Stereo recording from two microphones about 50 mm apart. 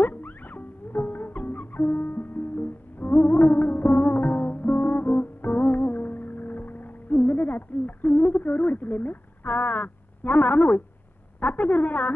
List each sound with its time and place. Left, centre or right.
0.0 s music: left
7.2 s a sound: left
8.2 s a woman's voice: left